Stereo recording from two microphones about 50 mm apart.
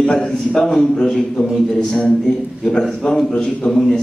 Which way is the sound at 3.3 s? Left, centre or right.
Centre.